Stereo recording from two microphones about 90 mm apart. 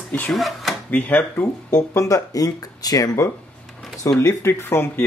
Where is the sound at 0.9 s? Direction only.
15° left (ahead or behind).